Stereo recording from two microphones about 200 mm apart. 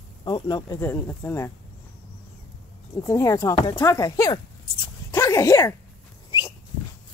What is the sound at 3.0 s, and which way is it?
Speech, 15° left (ahead or behind).